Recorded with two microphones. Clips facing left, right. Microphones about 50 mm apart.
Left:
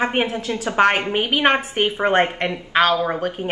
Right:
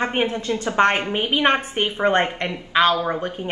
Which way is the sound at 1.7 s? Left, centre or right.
Centre.